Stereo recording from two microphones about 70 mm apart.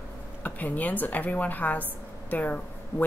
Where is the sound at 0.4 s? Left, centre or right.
Left.